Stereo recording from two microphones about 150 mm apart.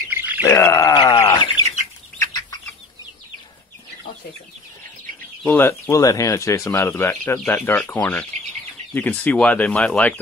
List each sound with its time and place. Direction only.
0.1 s bird: 15° right (ahead or behind)
0.5 s bird: 20° left (ahead or behind)
5.4 s speech: 15° left (ahead or behind)